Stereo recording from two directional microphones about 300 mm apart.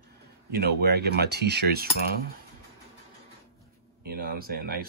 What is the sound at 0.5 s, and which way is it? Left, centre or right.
Speech, right.